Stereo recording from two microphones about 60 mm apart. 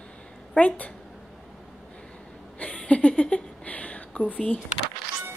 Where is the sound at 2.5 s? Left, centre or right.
Centre.